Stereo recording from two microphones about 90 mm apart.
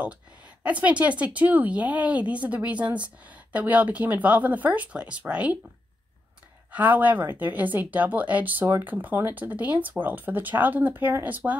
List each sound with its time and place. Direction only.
0.7 s speech: 15° right (ahead or behind)
6.7 s a woman's voice: 20° right (ahead or behind)